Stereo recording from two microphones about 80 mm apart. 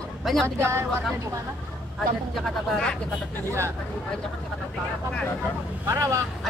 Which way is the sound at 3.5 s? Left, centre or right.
Right.